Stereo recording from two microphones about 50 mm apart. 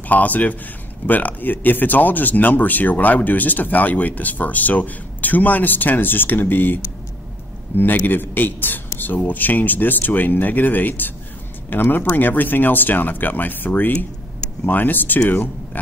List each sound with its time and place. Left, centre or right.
0.1 s speech: left